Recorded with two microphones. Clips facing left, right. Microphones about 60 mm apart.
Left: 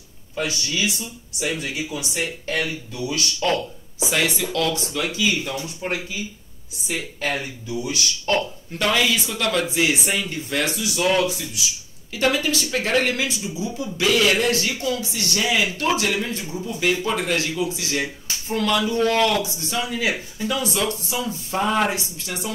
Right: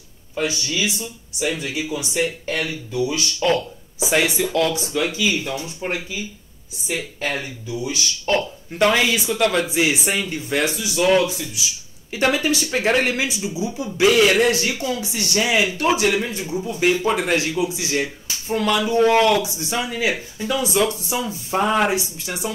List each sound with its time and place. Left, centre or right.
0.4 s speech: centre
4.1 s speech: right
7.2 s speech: centre
8.7 s speech: right
9.8 s speech: centre
12.1 s speech: right
20.1 s speech: centre
20.5 s speech: centre